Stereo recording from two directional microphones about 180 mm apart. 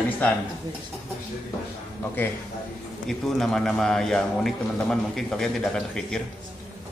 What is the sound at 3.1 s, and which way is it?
A man's voice, centre (ahead or behind).